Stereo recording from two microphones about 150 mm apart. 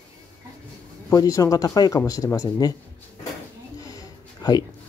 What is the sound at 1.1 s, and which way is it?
Speech, 25° left (ahead or behind).